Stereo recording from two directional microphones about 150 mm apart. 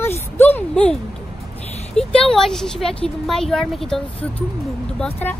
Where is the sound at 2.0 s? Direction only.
5° left (ahead or behind).